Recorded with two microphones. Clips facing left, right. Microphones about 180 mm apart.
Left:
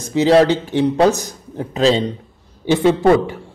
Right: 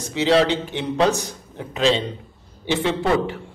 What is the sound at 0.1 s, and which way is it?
A man's voice, 45° left (ahead or behind).